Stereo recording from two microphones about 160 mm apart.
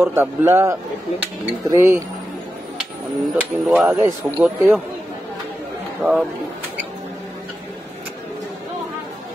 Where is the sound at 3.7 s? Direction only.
15° right (ahead or behind).